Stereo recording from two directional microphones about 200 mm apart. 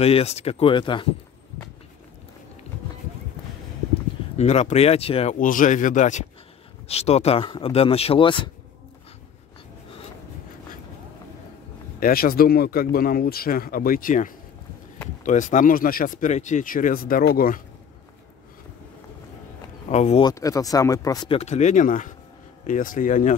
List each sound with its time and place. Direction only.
0.0 s speech: 30° left (ahead or behind)
4.4 s speech: 35° left (ahead or behind)
12.0 s speech: 45° left (ahead or behind)
19.9 s speech: 35° left (ahead or behind)
20.2 s speech: 15° left (ahead or behind)
21.4 s speech: 35° left (ahead or behind)